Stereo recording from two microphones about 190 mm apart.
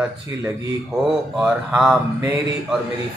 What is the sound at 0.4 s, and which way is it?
Speech, 15° right (ahead or behind).